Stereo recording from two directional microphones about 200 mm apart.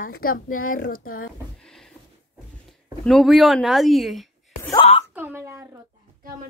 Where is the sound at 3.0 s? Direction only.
Centre (ahead or behind).